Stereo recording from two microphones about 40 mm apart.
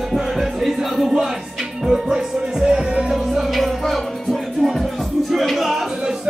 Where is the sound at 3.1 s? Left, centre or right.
Centre.